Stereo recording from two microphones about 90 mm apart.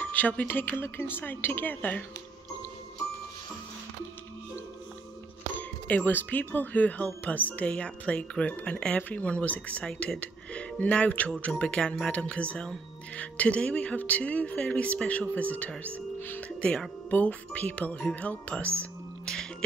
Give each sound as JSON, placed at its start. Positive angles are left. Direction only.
{"t": 0.0, "sound": "speech", "side_deg": 20}
{"t": 5.6, "sound": "speech", "side_deg": 20}
{"t": 18.8, "sound": "music", "side_deg": 10}